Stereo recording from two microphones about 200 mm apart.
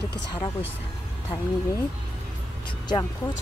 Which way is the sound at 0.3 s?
25° left (ahead or behind).